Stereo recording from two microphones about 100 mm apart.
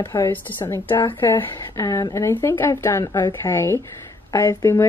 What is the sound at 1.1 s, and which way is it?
Speech, 20° left (ahead or behind).